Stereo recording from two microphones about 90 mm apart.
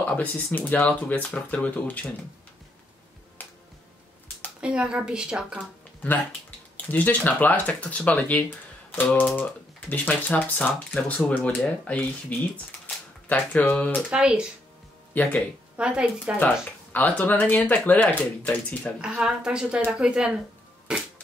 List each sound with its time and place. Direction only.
0.0 s speech: 15° left (ahead or behind)
4.6 s speech: 10° right (ahead or behind)
6.9 s speech: 20° left (ahead or behind)
12.8 s typewriter: 20° left (ahead or behind)
14.1 s speech: 10° right (ahead or behind)
15.2 s speech: 20° left (ahead or behind)
15.8 s speech: 15° right (ahead or behind)
16.9 s speech: 20° left (ahead or behind)
18.9 s speech: 5° right (ahead or behind)
20.9 s music: 10° right (ahead or behind)